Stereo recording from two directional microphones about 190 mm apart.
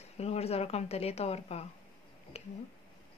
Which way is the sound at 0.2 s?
35° left (ahead or behind).